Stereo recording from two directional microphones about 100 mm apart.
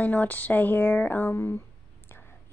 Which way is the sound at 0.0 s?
15° left (ahead or behind).